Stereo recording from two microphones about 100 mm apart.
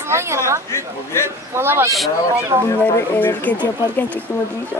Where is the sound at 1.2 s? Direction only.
25° right (ahead or behind).